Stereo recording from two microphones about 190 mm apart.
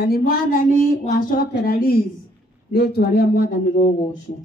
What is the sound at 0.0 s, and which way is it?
A man's voice, 55° left (ahead or behind).